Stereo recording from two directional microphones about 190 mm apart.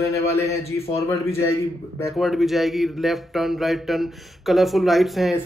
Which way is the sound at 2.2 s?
Centre (ahead or behind).